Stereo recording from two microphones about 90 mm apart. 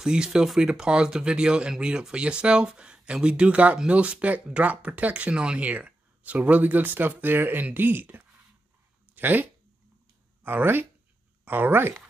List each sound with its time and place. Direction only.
0.0 s speech: 10° right (ahead or behind)